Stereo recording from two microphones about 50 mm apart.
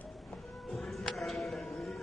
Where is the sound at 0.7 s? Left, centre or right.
Centre.